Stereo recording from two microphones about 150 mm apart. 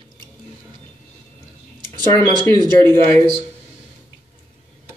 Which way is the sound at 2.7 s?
15° left (ahead or behind).